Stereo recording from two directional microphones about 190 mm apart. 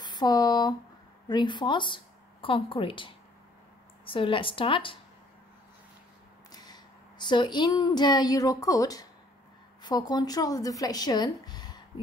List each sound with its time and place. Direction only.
0.0 s speech: 20° left (ahead or behind)
6.5 s speech: 20° left (ahead or behind)